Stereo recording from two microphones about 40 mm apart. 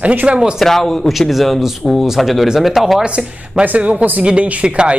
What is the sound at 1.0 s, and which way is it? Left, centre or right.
Speech, centre.